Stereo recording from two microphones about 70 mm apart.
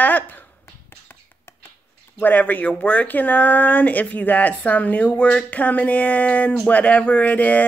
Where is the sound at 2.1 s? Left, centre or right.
Left.